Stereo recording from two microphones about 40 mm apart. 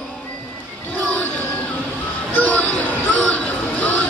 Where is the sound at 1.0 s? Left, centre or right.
Left.